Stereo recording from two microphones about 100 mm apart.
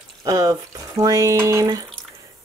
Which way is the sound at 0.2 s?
40° right (ahead or behind).